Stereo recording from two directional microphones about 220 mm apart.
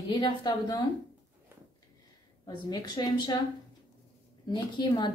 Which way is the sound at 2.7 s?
20° left (ahead or behind).